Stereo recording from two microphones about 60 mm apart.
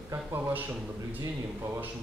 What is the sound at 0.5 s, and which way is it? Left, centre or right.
Speech, right.